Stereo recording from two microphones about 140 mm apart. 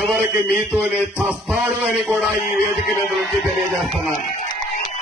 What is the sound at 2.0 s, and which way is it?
Speech, centre (ahead or behind).